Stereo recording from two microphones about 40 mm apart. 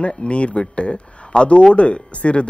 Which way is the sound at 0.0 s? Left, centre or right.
Left.